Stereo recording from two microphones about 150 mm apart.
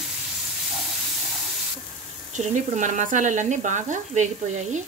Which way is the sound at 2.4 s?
55° right (ahead or behind).